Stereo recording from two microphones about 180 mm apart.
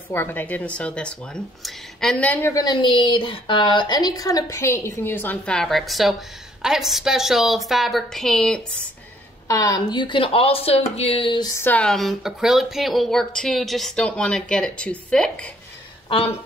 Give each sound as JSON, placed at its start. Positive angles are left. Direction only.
{"t": 0.1, "sound": "speech", "side_deg": 10}
{"t": 9.5, "sound": "speech", "side_deg": 20}
{"t": 11.5, "sound": "speech", "side_deg": 10}
{"t": 16.1, "sound": "speech", "side_deg": 30}